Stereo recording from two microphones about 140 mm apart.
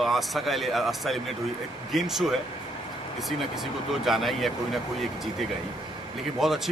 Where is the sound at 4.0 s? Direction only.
Centre (ahead or behind).